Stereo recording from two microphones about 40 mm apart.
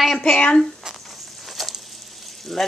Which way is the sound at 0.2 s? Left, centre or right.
Left.